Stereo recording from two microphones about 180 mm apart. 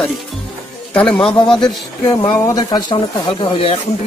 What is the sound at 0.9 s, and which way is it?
Speech, 5° left (ahead or behind).